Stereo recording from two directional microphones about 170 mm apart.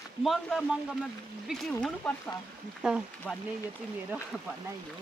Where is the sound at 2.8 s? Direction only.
5° right (ahead or behind).